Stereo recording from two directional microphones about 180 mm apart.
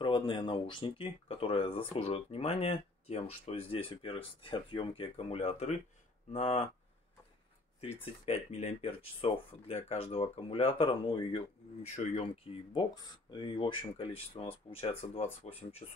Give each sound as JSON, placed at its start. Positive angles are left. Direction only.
{"t": 0.0, "sound": "speech", "side_deg": 30}
{"t": 7.8, "sound": "speech", "side_deg": 35}